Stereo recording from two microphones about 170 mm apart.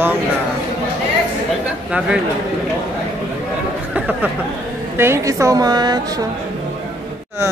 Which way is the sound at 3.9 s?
10° right (ahead or behind).